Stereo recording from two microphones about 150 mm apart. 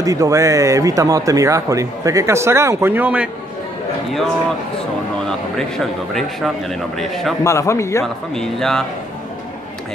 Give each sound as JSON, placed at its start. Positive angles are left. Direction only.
{"t": 0.0, "sound": "speech", "side_deg": -20}
{"t": 6.1, "sound": "a man's voice", "side_deg": 0}
{"t": 7.4, "sound": "a man's voice", "side_deg": 20}
{"t": 8.0, "sound": "a man's voice", "side_deg": 0}